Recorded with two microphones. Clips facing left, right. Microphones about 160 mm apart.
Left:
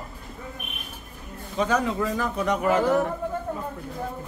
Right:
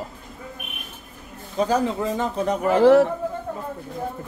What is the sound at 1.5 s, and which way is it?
A man's voice, 30° right (ahead or behind).